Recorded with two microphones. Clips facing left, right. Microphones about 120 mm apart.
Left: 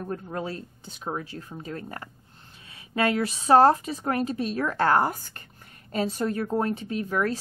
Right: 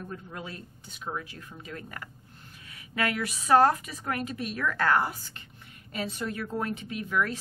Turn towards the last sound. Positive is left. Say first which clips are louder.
# left 3 dB
turn(degrees=35)  # may be behind; listen again after turning